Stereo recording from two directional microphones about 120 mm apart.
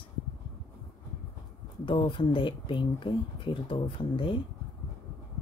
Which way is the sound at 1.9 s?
45° left (ahead or behind).